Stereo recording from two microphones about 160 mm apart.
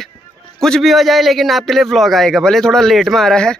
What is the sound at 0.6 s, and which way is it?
A man's voice, 5° left (ahead or behind).